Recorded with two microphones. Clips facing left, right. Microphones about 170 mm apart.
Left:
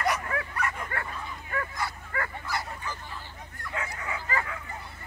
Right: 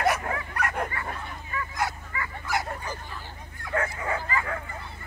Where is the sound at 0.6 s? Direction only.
70° right (ahead or behind).